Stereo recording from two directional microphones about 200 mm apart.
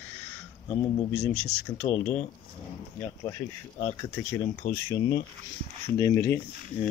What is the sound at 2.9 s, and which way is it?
Speech, 15° left (ahead or behind).